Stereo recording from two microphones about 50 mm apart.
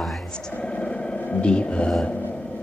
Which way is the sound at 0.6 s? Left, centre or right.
Centre.